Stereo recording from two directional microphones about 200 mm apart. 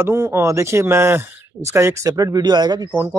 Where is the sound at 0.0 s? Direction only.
10° right (ahead or behind).